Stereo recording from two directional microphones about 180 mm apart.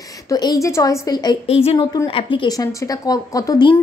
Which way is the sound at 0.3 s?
20° left (ahead or behind).